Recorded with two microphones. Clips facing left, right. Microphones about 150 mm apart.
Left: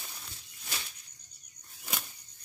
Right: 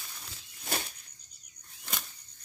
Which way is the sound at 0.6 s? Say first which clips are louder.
Right 8 dB; 50° right (ahead or behind).